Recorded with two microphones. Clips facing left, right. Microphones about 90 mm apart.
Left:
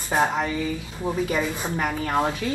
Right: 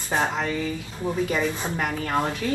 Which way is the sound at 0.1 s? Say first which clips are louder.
Left 2 dB; 15° left (ahead or behind).